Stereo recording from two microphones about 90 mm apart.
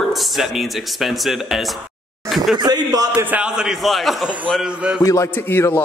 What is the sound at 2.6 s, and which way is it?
Speech, 50° right (ahead or behind).